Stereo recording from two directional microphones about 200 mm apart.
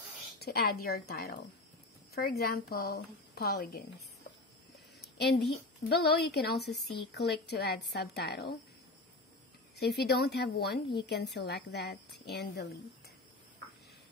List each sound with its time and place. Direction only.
0.4 s a woman's voice: 50° left (ahead or behind)
5.0 s a woman's voice: 55° left (ahead or behind)
9.8 s a woman's voice: 55° left (ahead or behind)